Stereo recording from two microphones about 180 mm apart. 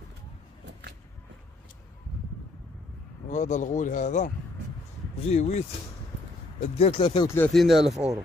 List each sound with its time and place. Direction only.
3.3 s speech: 40° left (ahead or behind)
5.3 s speech: 35° left (ahead or behind)
6.8 s speech: 30° left (ahead or behind)
7.2 s speech: 10° left (ahead or behind)
7.5 s speech: centre (ahead or behind)